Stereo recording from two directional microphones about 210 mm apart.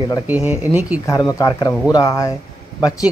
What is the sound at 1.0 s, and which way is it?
A man's voice, 15° left (ahead or behind).